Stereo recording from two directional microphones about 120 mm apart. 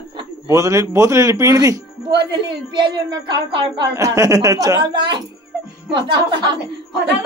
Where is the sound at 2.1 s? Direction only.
40° right (ahead or behind).